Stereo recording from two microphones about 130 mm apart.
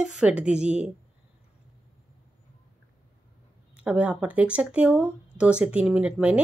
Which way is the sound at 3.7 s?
10° right (ahead or behind).